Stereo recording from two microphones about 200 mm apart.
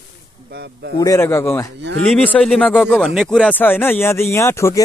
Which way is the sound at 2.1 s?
Centre (ahead or behind).